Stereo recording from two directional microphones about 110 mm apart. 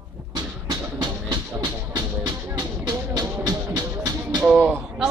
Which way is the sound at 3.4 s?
40° right (ahead or behind).